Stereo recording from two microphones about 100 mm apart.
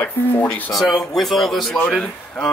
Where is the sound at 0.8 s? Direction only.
5° left (ahead or behind).